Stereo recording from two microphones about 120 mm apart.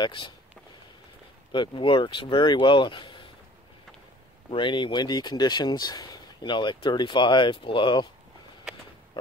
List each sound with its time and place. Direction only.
0.0 s speech: 45° left (ahead or behind)
1.5 s speech: 40° left (ahead or behind)
4.5 s speech: 45° left (ahead or behind)